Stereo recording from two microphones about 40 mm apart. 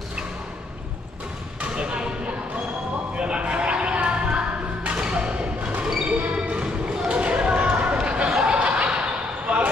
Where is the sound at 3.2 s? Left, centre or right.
Right.